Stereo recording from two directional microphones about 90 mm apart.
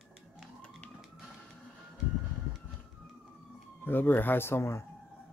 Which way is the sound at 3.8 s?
25° left (ahead or behind).